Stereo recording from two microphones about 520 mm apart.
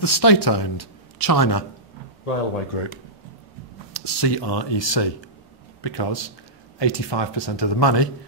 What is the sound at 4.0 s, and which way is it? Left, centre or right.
A man's voice, left.